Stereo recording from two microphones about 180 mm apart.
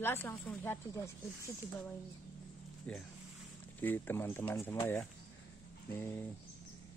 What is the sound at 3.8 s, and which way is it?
Speech, 10° left (ahead or behind).